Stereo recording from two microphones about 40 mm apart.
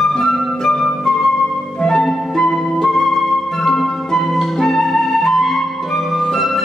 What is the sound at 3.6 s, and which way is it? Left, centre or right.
Flute, centre.